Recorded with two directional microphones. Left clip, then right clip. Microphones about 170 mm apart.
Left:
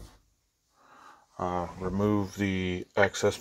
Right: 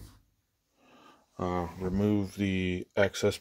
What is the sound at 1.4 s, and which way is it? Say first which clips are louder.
Speech: left 2 dB; 30° right (ahead or behind).